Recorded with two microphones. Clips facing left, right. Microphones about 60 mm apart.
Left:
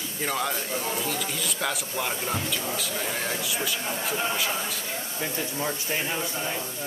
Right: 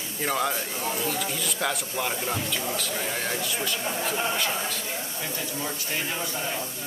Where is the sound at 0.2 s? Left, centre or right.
Centre.